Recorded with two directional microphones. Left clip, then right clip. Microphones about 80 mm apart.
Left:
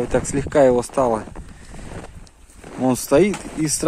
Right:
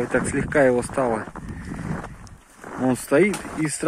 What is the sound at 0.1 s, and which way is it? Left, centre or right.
Speech, left.